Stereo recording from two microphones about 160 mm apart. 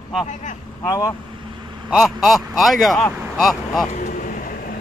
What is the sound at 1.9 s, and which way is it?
Speech, centre (ahead or behind).